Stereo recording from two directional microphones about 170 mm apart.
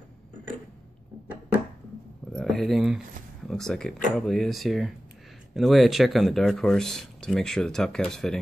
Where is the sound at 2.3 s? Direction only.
Centre (ahead or behind).